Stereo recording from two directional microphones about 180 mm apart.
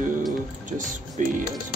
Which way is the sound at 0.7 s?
45° right (ahead or behind).